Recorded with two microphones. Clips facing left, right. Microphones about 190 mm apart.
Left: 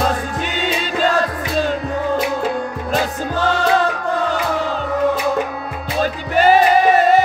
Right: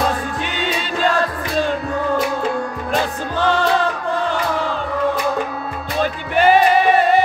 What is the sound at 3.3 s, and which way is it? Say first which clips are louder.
Music: right 1 dB; 45° left (ahead or behind).